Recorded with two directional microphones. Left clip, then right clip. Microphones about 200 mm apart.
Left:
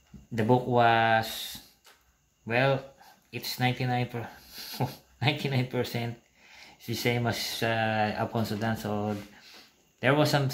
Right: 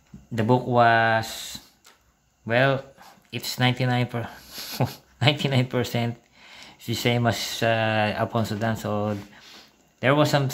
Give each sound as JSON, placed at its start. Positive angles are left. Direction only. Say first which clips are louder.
{"t": 0.3, "sound": "speech", "louder": "right 3 dB", "side_deg": -15}
{"t": 2.4, "sound": "speech", "louder": "right 5 dB", "side_deg": -25}